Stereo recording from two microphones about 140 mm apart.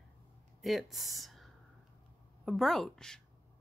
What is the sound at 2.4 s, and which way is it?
Speech, centre (ahead or behind).